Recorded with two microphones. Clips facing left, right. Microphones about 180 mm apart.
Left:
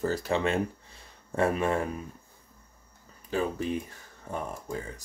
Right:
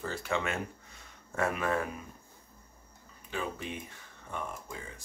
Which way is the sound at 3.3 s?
40° left (ahead or behind).